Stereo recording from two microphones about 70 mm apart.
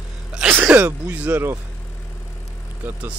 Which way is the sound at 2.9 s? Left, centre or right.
Right.